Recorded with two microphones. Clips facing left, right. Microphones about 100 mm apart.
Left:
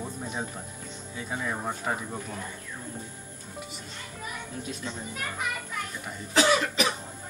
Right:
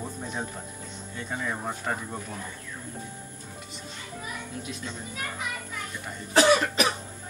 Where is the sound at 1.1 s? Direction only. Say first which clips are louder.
Even; 5° left (ahead or behind).